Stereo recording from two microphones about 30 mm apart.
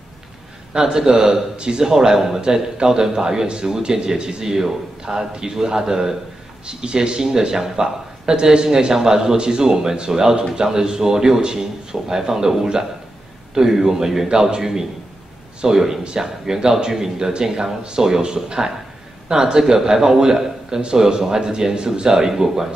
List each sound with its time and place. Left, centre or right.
0.7 s a man's voice: right
5.0 s a man's voice: right